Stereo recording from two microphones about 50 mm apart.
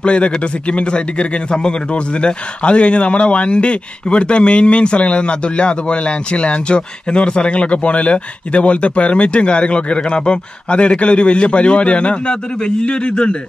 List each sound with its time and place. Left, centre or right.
0.0 s speech: left